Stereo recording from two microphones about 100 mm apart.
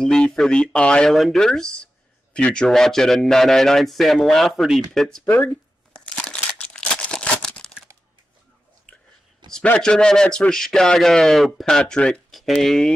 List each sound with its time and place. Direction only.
0.0 s a man's voice: 5° left (ahead or behind)
5.3 s speech: 25° left (ahead or behind)
6.0 s crumpling: 10° left (ahead or behind)
9.5 s a man's voice: 10° left (ahead or behind)